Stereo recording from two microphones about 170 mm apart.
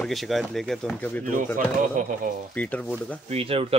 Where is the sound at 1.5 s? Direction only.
50° right (ahead or behind).